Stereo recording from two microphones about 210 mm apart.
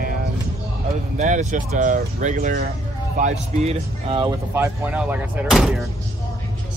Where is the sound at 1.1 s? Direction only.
35° right (ahead or behind).